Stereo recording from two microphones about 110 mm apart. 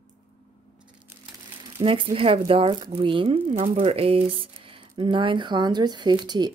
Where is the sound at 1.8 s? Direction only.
55° right (ahead or behind).